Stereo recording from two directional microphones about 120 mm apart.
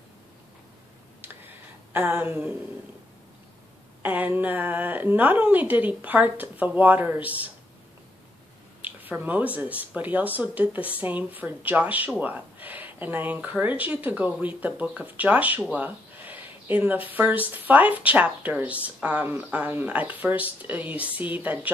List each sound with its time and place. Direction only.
1.9 s speech: 15° right (ahead or behind)
4.0 s speech: 15° right (ahead or behind)
8.8 s speech: 15° right (ahead or behind)